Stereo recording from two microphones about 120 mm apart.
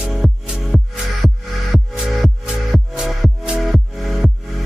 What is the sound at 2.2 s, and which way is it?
Music, centre (ahead or behind).